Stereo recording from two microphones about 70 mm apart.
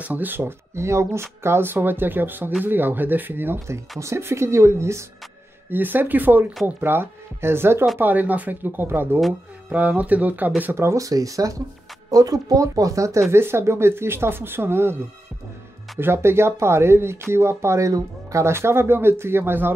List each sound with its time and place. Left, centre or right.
0.0 s speech: right
5.7 s speech: right
8.0 s speech: right
10.6 s speech: right
11.0 s speech: right
13.3 s speech: right
16.0 s speech: right